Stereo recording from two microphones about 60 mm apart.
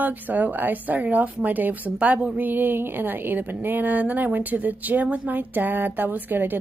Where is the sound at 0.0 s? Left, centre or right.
Right.